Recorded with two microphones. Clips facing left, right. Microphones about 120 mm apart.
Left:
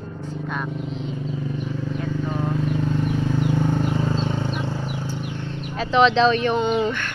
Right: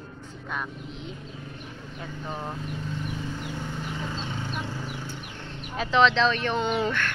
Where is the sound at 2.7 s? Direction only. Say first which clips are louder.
Left 11 dB; 70° left (ahead or behind).